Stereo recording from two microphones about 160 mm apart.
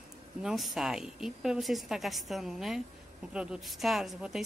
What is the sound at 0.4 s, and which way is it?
A woman's voice, centre (ahead or behind).